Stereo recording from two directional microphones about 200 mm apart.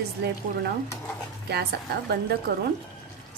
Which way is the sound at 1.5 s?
55° right (ahead or behind).